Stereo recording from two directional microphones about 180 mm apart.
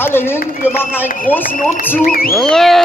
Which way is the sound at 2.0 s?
55° left (ahead or behind).